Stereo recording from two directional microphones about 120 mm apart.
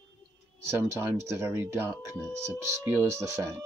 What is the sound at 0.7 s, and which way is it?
Speech, 20° right (ahead or behind).